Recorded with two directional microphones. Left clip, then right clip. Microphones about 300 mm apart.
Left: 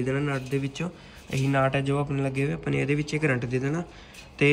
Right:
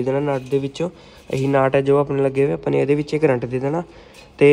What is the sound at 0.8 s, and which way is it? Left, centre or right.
Speech, right.